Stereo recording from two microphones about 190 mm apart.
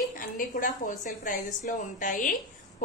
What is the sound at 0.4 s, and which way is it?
A woman's voice, 45° left (ahead or behind).